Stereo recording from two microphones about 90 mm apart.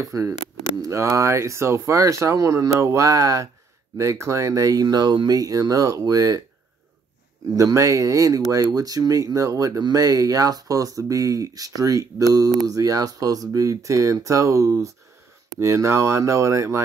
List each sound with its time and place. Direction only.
0.0 s speech: 35° right (ahead or behind)
4.8 s speech: 50° right (ahead or behind)
7.4 s speech: 40° right (ahead or behind)